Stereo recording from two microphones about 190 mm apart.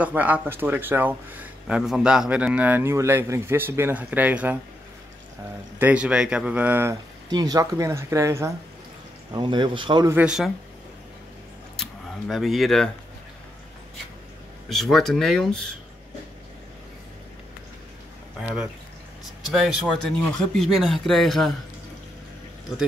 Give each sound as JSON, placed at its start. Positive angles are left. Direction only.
{"t": 0.0, "sound": "speech", "side_deg": -10}
{"t": 5.8, "sound": "speech", "side_deg": -5}
{"t": 10.1, "sound": "speech", "side_deg": -5}
{"t": 11.7, "sound": "a sound", "side_deg": 0}
{"t": 14.7, "sound": "speech", "side_deg": 0}
{"t": 19.4, "sound": "speech", "side_deg": 0}